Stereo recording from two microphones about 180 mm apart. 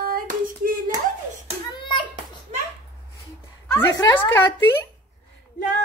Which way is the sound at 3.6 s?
15° left (ahead or behind).